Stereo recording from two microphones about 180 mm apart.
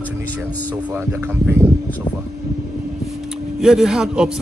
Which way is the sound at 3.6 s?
5° right (ahead or behind).